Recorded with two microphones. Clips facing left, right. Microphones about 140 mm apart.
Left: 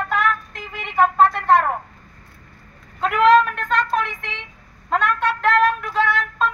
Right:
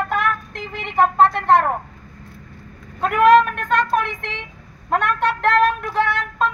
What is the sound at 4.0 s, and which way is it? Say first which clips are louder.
Speech: right 1 dB; 55° right (ahead or behind).